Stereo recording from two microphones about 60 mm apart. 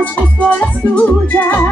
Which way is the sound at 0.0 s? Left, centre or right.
Left.